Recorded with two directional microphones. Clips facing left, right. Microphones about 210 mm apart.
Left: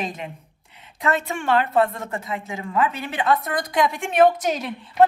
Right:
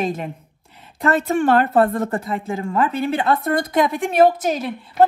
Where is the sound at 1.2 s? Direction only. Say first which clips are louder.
Right 6 dB; 50° right (ahead or behind).